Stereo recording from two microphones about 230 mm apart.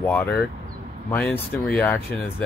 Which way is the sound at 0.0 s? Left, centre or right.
Centre.